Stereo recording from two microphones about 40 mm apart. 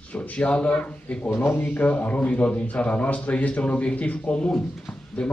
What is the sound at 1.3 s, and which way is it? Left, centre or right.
Speech, left.